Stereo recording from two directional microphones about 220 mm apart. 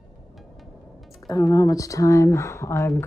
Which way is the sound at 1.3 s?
15° left (ahead or behind).